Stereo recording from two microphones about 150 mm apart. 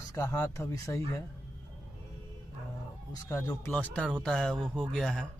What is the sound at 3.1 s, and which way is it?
Speech, 15° left (ahead or behind).